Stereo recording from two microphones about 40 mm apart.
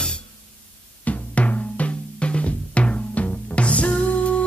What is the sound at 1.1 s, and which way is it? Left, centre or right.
Music, left.